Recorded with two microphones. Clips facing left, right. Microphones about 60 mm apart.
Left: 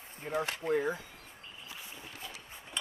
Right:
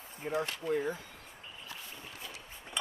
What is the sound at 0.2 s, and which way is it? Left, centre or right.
Speech, centre.